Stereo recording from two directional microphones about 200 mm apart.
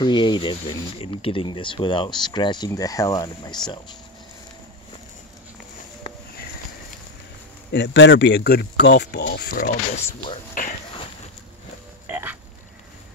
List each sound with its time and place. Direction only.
0.0 s speech: 20° left (ahead or behind)
7.7 s speech: 60° left (ahead or behind)
10.0 s speech: 30° left (ahead or behind)
12.1 s frog: 10° right (ahead or behind)